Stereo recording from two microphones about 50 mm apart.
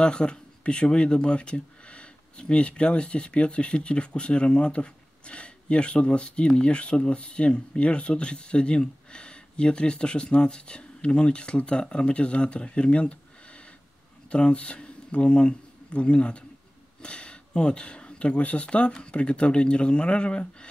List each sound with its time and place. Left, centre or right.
0.0 s speech: centre